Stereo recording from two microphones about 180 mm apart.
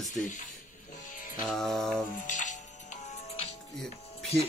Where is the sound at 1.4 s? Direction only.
Centre (ahead or behind).